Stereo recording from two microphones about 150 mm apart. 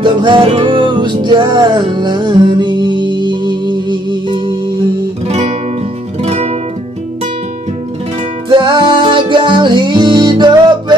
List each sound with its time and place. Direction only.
0.0 s music: 30° right (ahead or behind)
5.3 s music: 45° right (ahead or behind)
8.5 s music: 30° right (ahead or behind)